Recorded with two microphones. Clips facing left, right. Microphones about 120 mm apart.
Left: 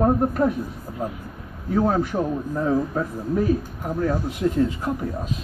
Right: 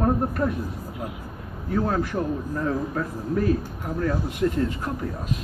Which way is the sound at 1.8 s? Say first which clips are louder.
Left 4 dB; 20° left (ahead or behind).